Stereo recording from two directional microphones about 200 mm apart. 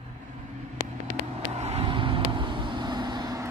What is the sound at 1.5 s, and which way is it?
Vehicle, 30° right (ahead or behind).